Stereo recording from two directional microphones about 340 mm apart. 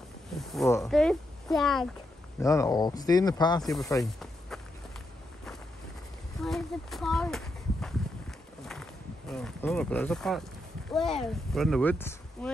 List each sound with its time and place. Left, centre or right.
0.4 s speech: centre
6.4 s a sound: centre
9.3 s speech: centre